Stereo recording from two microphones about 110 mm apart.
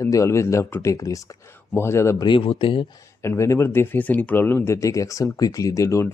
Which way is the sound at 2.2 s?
50° left (ahead or behind).